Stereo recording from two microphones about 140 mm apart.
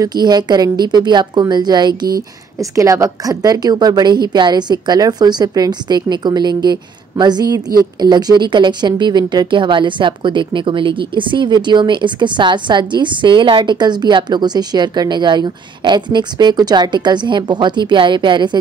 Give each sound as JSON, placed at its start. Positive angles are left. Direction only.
{"t": 0.0, "sound": "a woman's voice", "side_deg": -30}